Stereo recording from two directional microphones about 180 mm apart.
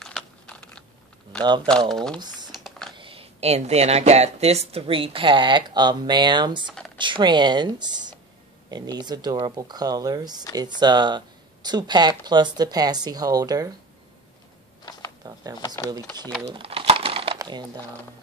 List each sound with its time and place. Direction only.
0.0 s a sound: 5° left (ahead or behind)
1.9 s speech: centre (ahead or behind)
2.1 s speech: 25° right (ahead or behind)
2.5 s typing: centre (ahead or behind)
3.0 s speech: 30° right (ahead or behind)
15.2 s a sound: 20° right (ahead or behind)
16.4 s typing: 30° right (ahead or behind)